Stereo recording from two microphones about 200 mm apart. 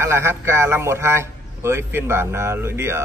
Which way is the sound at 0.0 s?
15° right (ahead or behind).